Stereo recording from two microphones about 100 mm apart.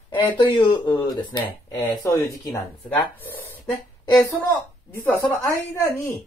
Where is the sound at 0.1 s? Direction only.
50° left (ahead or behind); by 2.3 s 35° left (ahead or behind).